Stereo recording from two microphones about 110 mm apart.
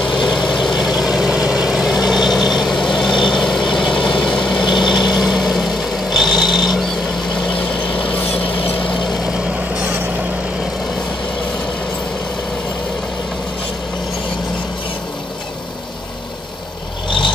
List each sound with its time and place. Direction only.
0.5 s vehicle: centre (ahead or behind)
4.6 s vehicle: 45° left (ahead or behind)
5.1 s vehicle: centre (ahead or behind)
7.9 s vehicle: 55° left (ahead or behind)